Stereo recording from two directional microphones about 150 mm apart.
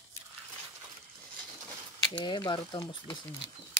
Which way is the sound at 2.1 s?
30° left (ahead or behind).